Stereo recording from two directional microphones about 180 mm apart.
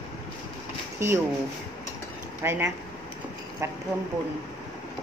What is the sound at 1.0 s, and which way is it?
Speech, 15° right (ahead or behind).